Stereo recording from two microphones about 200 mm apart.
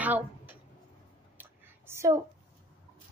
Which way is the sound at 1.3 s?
10° right (ahead or behind).